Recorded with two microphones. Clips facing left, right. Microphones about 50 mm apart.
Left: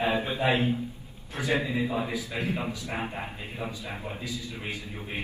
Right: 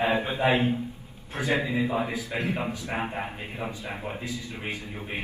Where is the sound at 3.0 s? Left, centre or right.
Right.